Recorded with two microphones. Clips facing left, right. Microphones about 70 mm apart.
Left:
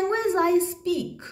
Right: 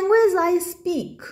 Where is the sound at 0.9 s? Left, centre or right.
Centre.